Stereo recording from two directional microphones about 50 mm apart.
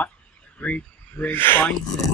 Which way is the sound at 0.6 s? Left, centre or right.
Left.